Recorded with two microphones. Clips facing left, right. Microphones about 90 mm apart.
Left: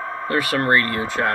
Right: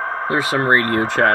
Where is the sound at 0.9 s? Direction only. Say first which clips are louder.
Right 6 dB; 50° right (ahead or behind).